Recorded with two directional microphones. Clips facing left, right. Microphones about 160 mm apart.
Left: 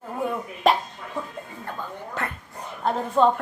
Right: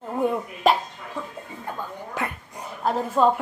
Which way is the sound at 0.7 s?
Centre (ahead or behind).